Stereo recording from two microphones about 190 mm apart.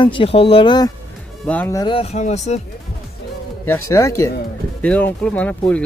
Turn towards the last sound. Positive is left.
turn(degrees=5)  # may be behind; listen again after turning